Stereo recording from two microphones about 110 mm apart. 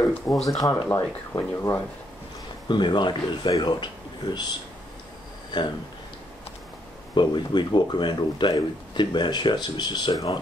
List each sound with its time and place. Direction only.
0.0 s speech: centre (ahead or behind)
0.6 s speech: 30° left (ahead or behind)
2.7 s speech: 45° left (ahead or behind)
5.5 s speech: 40° left (ahead or behind)
7.2 s speech: 45° left (ahead or behind)